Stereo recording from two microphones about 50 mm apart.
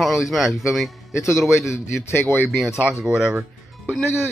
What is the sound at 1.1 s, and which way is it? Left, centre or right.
Speech, left.